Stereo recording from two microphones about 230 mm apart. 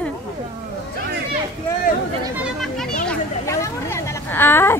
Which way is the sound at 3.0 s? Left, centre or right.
Centre.